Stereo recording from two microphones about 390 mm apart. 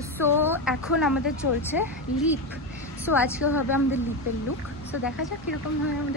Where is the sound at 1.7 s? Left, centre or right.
Centre.